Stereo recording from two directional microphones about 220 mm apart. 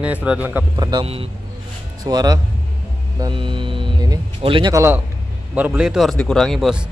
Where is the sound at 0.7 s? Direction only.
20° right (ahead or behind).